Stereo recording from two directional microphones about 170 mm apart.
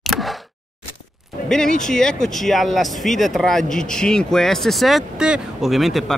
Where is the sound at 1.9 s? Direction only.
5° left (ahead or behind).